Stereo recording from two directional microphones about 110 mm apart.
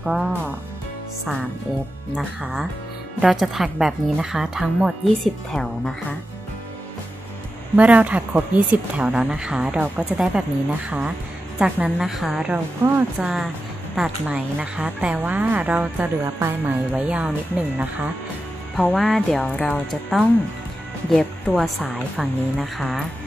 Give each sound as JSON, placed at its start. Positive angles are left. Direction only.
{"t": 0.0, "sound": "a woman's voice", "side_deg": -5}
{"t": 2.1, "sound": "a woman's voice", "side_deg": 0}
{"t": 7.7, "sound": "a woman's voice", "side_deg": -10}
{"t": 12.8, "sound": "speech", "side_deg": -20}
{"t": 13.2, "sound": "a woman's voice", "side_deg": -5}
{"t": 18.8, "sound": "a woman's voice", "side_deg": 5}
{"t": 19.4, "sound": "a woman's voice", "side_deg": 10}